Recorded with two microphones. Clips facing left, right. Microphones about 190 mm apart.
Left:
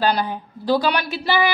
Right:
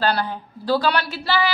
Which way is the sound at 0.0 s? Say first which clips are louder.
Left 2 dB; 15° left (ahead or behind).